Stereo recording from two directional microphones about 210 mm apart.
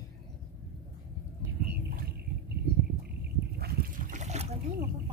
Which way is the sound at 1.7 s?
45° right (ahead or behind).